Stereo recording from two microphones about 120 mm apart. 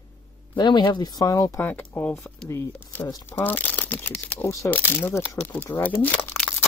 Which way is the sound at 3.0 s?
25° left (ahead or behind).